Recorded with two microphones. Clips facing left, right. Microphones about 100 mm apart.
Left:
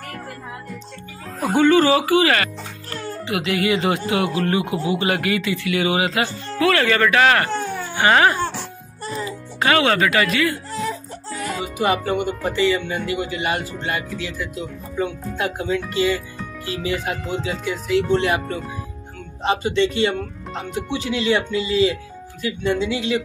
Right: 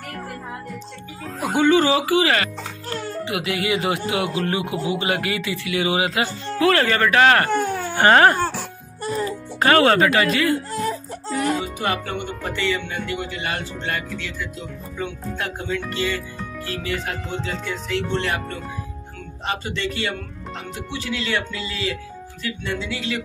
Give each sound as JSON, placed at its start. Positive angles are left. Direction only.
{"t": 1.5, "sound": "speech", "side_deg": -20}
{"t": 8.0, "sound": "speech", "side_deg": -45}
{"t": 11.6, "sound": "speech", "side_deg": 10}